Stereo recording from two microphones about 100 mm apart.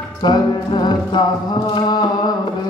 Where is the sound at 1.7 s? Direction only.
45° left (ahead or behind).